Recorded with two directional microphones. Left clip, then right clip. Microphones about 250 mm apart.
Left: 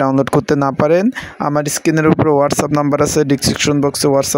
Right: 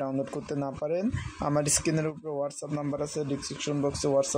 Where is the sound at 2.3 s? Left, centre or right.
Left.